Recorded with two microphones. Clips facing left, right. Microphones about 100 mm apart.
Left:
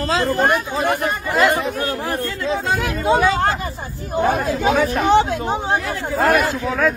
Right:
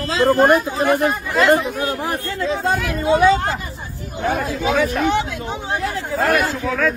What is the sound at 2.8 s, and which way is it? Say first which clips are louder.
Speech: right 2 dB; 35° left (ahead or behind).